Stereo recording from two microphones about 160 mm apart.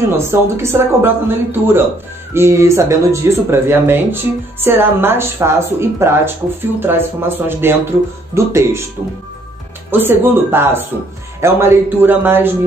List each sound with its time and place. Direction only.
0.2 s speech: 15° right (ahead or behind)
9.8 s speech: 15° right (ahead or behind)